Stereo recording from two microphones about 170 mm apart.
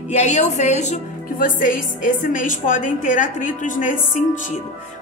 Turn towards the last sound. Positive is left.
turn(degrees=50)  # may be behind; listen again after turning